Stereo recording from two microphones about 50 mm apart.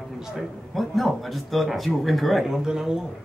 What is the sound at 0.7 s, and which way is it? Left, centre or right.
Speech, centre.